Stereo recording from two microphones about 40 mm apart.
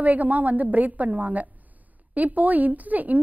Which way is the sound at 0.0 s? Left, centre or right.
Right.